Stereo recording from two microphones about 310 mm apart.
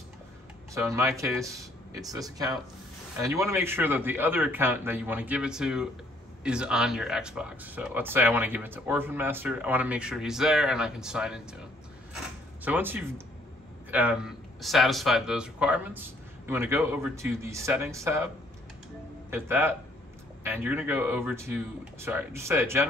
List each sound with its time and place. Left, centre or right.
0.7 s a man's voice: centre
12.6 s a man's voice: centre
19.3 s a man's voice: centre